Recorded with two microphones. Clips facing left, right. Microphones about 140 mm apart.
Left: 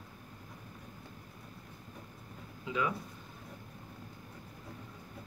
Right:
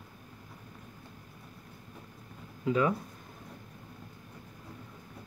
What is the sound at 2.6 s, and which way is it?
Speech, 40° right (ahead or behind).